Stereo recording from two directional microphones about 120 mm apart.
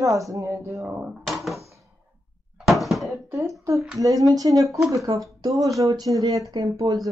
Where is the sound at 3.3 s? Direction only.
25° right (ahead or behind).